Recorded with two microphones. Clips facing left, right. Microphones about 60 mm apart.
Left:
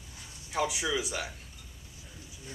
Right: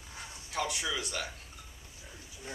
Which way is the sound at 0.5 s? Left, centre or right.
Centre.